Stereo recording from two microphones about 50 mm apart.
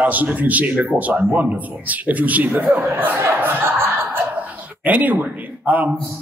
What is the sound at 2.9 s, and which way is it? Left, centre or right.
Speech, right.